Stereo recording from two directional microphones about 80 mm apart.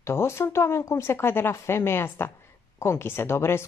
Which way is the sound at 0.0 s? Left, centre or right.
Left.